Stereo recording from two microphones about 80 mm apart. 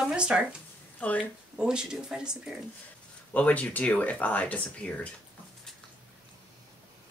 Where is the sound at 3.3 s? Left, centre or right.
Centre.